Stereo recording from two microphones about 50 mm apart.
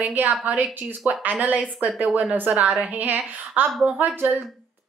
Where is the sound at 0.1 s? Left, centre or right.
Right.